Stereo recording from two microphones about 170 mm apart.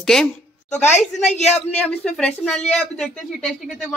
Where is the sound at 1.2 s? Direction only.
40° left (ahead or behind).